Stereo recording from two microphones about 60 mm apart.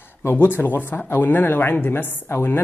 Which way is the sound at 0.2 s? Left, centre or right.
Left.